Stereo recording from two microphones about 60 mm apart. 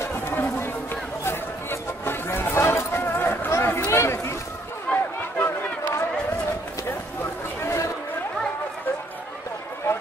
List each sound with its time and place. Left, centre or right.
0.0 s run: left
1.2 s a sound: left
4.9 s run: centre
5.4 s run: left
7.6 s chatter: left